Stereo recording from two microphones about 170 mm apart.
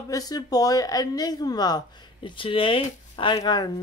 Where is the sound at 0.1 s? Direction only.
20° left (ahead or behind).